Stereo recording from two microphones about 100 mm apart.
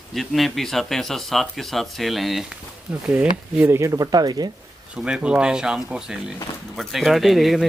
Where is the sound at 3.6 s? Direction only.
30° right (ahead or behind).